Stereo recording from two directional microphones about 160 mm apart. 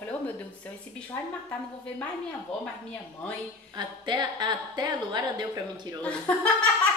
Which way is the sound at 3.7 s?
25° right (ahead or behind).